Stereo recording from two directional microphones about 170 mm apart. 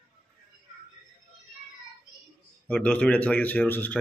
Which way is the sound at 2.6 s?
5° left (ahead or behind).